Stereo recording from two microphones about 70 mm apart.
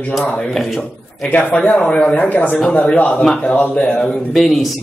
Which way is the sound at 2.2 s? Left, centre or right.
Left.